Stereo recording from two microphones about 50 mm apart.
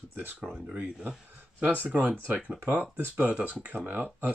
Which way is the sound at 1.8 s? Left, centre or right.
Right.